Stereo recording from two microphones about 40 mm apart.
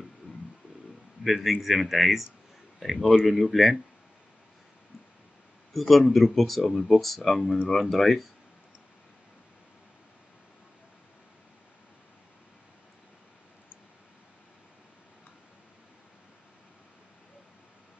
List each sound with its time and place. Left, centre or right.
1.2 s speech: centre
5.7 s speech: centre
7.4 s speech: centre
7.8 s speech: centre